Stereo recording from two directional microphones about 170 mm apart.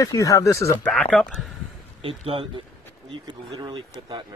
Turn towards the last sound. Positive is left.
turn(degrees=-30)  # may be behind; listen again after turning